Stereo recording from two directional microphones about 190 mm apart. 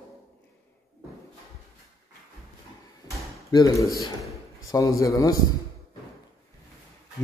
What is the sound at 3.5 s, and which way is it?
A man's voice, 20° left (ahead or behind).